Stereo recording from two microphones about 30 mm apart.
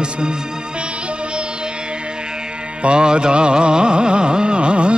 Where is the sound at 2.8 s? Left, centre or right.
Right.